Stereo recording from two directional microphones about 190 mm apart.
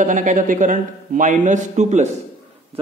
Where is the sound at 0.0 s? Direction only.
40° right (ahead or behind).